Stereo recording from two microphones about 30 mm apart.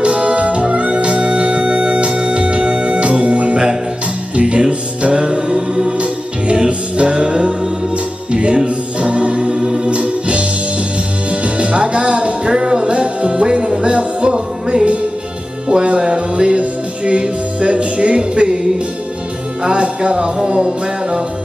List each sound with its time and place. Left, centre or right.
0.0 s music: right
0.4 s music: right
5.9 s music: right
9.4 s music: centre
9.8 s music: right
19.6 s music: right